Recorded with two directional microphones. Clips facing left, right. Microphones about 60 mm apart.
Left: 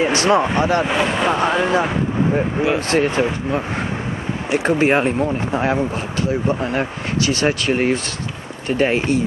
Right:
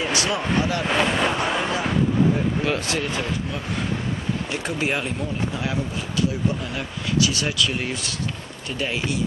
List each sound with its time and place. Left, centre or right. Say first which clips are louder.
0.0 s speech: left 8 dB; left
0.4 s speech: left 5 dB; left
0.8 s speech: left 3 dB; centre
1.7 s speech: left 4 dB; left
2.9 s speech: left 8 dB; left
4.6 s speech: left 10 dB; left